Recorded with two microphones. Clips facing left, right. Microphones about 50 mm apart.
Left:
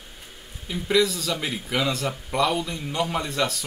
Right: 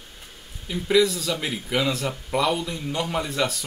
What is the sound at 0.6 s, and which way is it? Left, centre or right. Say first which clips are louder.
Speech: right 2 dB; centre.